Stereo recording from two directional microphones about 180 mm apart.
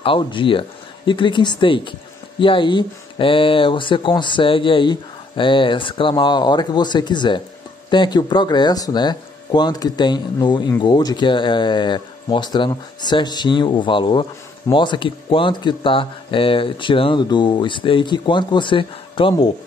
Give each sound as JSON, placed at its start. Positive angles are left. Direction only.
{"t": 0.0, "sound": "speech", "side_deg": 30}